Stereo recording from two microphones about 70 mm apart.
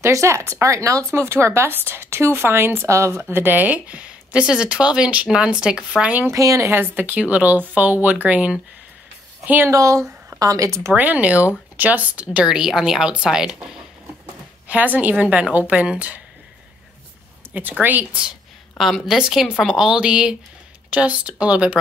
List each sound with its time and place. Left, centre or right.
0.0 s speech: right; by 6.2 s centre
6.3 s speech: right
6.7 s a woman's voice: right
9.7 s speech: right
11.0 s a woman's voice: right
12.4 s a woman's voice: centre
14.7 s a woman's voice: right
17.6 s a woman's voice: right
18.8 s a woman's voice: centre